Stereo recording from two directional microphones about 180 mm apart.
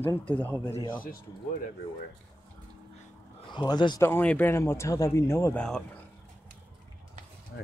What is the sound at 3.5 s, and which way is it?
Speech, 25° left (ahead or behind).